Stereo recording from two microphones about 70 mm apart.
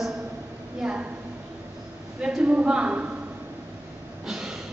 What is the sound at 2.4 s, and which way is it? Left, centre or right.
Speech, centre.